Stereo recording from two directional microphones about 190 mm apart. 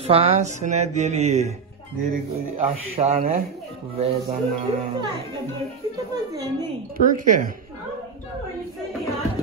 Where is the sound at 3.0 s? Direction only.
30° right (ahead or behind).